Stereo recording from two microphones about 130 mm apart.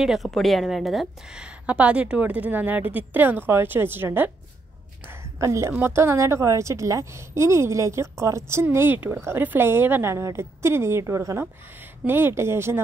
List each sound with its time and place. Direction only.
0.0 s a woman's voice: centre (ahead or behind); by 12.8 s 20° right (ahead or behind)